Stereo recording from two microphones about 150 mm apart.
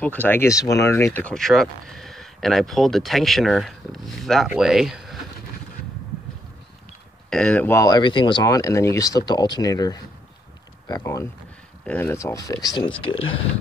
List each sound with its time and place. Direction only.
0.0 s speech: 10° left (ahead or behind)
7.2 s speech: 5° left (ahead or behind); by 13.5 s 40° left (ahead or behind)